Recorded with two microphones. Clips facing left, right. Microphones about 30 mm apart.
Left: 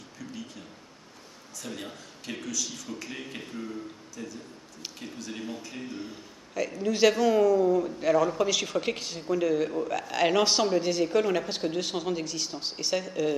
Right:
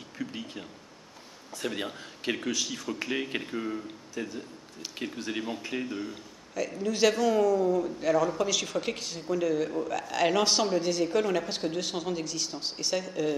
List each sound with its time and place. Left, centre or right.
0.2 s a sound: right
1.6 s a man's voice: right
5.9 s a man's voice: centre